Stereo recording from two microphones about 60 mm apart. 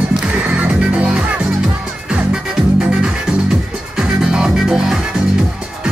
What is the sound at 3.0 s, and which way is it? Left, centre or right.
Music, centre.